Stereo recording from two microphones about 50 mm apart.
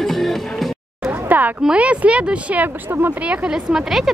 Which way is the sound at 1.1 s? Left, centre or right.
Right.